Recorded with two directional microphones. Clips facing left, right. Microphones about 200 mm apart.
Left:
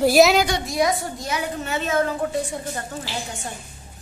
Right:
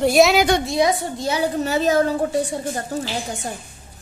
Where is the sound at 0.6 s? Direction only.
25° right (ahead or behind).